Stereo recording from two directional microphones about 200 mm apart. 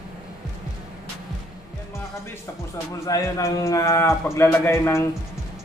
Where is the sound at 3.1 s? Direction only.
15° left (ahead or behind).